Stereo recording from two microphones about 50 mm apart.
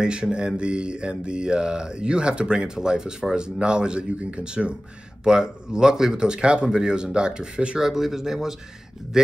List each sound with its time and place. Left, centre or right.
0.0 s mantra: centre
7.8 s mantra: centre